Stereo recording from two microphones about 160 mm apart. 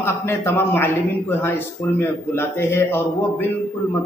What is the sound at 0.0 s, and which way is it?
A man's voice, 15° left (ahead or behind).